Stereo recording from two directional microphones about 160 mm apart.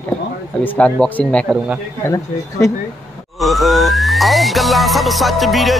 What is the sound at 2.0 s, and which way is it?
Speech, 20° left (ahead or behind).